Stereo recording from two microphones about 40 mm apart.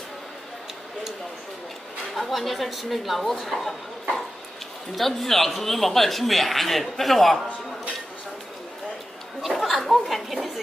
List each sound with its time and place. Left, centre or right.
2.1 s speech: centre
4.9 s speech: centre
9.6 s a sound: centre
10.0 s speech: centre